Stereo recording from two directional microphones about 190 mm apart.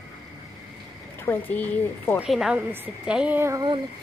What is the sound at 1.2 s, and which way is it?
Speech, 10° left (ahead or behind).